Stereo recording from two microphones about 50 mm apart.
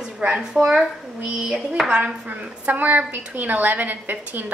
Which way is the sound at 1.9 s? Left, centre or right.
Right.